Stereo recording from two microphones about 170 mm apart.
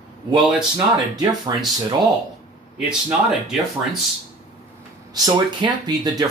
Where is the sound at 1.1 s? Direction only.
25° right (ahead or behind).